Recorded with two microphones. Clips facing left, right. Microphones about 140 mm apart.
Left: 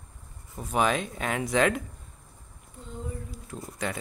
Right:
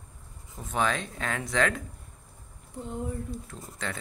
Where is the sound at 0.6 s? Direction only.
20° left (ahead or behind).